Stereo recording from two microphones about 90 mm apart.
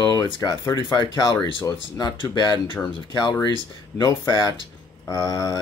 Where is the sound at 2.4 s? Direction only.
55° left (ahead or behind).